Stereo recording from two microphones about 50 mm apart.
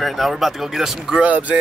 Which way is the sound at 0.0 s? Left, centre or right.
Centre.